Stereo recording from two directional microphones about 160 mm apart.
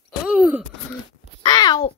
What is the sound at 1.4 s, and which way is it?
Speech, 25° left (ahead or behind).